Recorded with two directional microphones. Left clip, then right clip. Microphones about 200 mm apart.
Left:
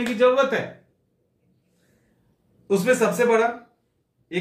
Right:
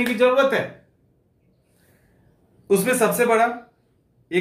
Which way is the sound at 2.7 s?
15° right (ahead or behind).